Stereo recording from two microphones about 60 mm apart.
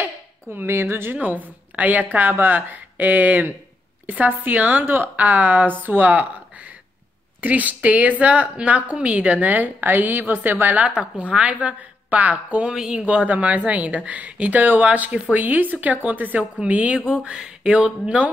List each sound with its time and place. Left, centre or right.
0.0 s a woman's voice: right
7.4 s a woman's voice: right
10.9 s a woman's voice: centre
12.7 s speech: centre
13.0 s a woman's voice: right